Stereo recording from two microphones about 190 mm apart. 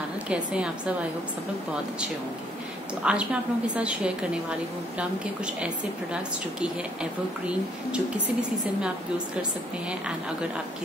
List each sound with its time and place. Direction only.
0.3 s a woman's voice: 5° right (ahead or behind)
3.0 s a woman's voice: 5° right (ahead or behind)